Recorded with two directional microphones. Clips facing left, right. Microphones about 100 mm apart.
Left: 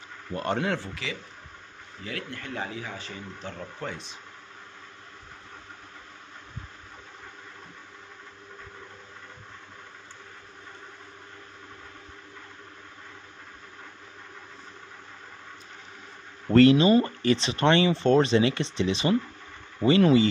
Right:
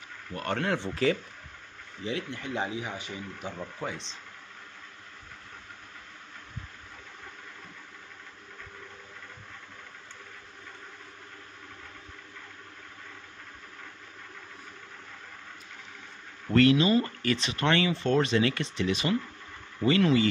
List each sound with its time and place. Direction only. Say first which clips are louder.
0.3 s speech: left 4 dB; 25° left (ahead or behind)
1.0 s speech: right 10 dB; 40° right (ahead or behind)
2.0 s speech: right 3 dB; 20° right (ahead or behind)
16.5 s speech: left 4 dB; 30° left (ahead or behind)